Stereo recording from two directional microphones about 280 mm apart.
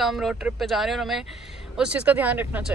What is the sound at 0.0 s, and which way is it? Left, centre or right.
Speech, centre.